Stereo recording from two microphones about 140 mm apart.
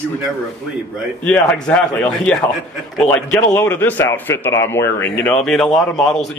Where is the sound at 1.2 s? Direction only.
10° left (ahead or behind).